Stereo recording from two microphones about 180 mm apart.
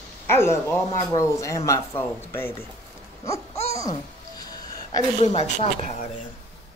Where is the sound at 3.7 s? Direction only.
20° left (ahead or behind).